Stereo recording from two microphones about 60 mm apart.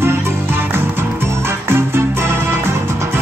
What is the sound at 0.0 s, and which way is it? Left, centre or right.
Music, right.